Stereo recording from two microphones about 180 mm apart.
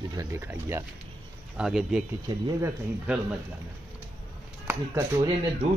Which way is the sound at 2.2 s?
20° right (ahead or behind).